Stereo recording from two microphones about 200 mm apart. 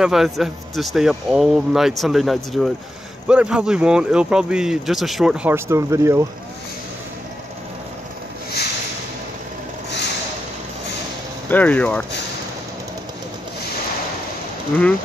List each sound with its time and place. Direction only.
0.0 s speech: centre (ahead or behind)
9.8 s a sound: 60° left (ahead or behind)
11.5 s speech: 5° left (ahead or behind)